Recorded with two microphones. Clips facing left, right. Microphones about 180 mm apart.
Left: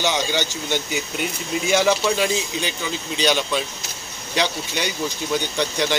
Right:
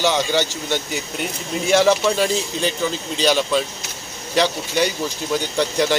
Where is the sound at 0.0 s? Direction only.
Centre (ahead or behind).